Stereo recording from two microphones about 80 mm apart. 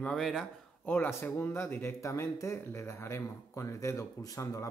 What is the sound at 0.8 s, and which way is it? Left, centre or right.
Speech, left.